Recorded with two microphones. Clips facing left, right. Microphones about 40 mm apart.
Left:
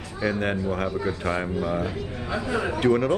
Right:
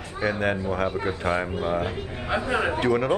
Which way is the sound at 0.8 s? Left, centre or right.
Right.